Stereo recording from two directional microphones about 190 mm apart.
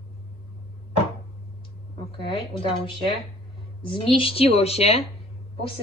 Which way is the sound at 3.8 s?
25° left (ahead or behind).